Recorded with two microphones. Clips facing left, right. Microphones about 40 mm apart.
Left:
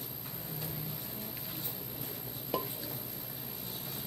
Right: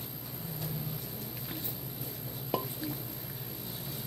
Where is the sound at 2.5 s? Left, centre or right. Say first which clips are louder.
Right 2 dB; centre.